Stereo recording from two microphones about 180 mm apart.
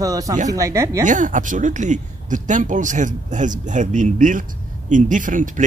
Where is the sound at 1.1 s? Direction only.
45° right (ahead or behind).